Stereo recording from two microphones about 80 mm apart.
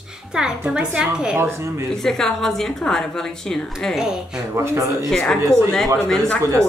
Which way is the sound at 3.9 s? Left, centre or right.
Centre.